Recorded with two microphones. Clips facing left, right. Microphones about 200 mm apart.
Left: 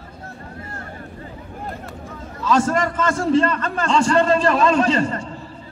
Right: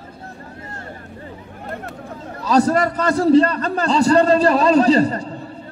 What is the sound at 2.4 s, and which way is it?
A man's voice, 35° right (ahead or behind).